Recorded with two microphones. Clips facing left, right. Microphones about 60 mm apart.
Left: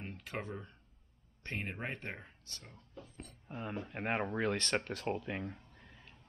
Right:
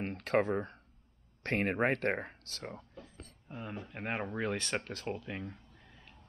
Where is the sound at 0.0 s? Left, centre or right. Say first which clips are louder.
Right 12 dB; right.